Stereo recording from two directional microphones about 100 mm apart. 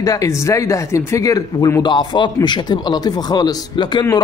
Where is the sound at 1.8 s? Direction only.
50° left (ahead or behind).